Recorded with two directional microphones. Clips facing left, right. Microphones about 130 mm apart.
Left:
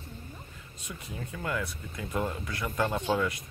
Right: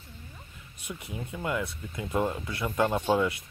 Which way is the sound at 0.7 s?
20° right (ahead or behind).